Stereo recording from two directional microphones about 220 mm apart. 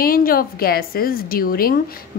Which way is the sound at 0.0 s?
40° left (ahead or behind).